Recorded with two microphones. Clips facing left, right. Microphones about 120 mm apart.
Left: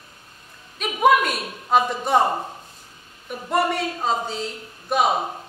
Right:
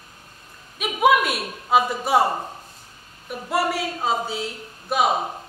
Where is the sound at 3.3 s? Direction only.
5° right (ahead or behind).